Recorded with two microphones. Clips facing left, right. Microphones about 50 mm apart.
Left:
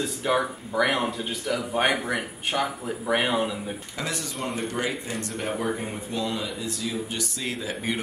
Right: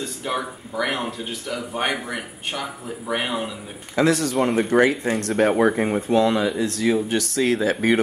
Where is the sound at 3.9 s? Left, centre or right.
Right.